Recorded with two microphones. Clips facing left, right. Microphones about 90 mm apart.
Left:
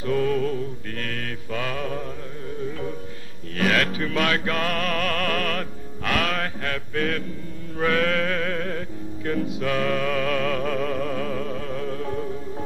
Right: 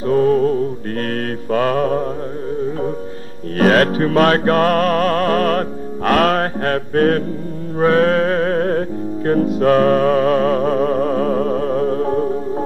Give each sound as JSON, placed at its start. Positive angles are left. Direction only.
{"t": 0.0, "sound": "music", "side_deg": -35}
{"t": 3.5, "sound": "music", "side_deg": -45}